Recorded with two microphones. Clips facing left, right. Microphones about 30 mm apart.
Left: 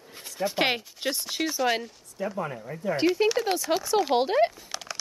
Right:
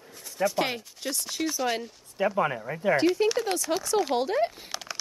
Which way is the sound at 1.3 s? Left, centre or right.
Centre.